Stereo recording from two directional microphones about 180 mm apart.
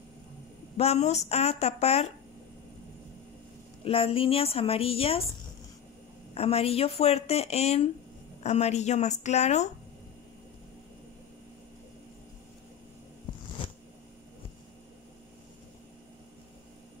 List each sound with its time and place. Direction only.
0.7 s speech: 35° left (ahead or behind)
3.8 s speech: 30° left (ahead or behind)
6.3 s speech: 35° left (ahead or behind)
13.6 s a sound: 30° left (ahead or behind)